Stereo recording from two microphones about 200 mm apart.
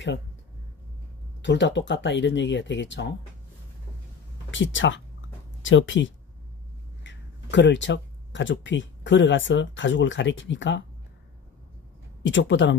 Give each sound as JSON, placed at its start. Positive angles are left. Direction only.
{"t": 1.4, "sound": "speech", "side_deg": 65}
{"t": 4.5, "sound": "speech", "side_deg": 70}
{"t": 12.2, "sound": "speech", "side_deg": 65}